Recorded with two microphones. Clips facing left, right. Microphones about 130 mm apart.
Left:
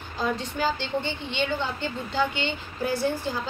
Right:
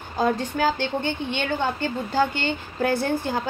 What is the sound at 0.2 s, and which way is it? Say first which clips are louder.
A woman's voice: right 5 dB; 50° right (ahead or behind).